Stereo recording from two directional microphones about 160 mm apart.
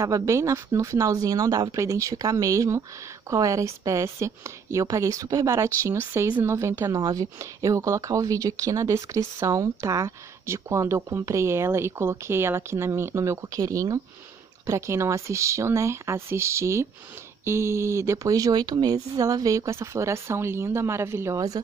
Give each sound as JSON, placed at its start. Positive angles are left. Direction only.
{"t": 0.0, "sound": "speech", "side_deg": -20}